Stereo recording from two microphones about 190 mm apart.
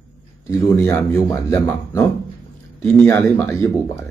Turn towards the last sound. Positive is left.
turn(degrees=15)  # may be behind; listen again after turning